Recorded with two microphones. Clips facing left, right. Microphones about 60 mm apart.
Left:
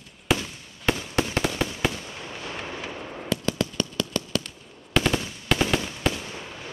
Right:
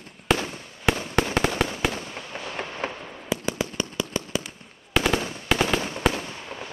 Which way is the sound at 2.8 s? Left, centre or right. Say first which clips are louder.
Right 5 dB; right.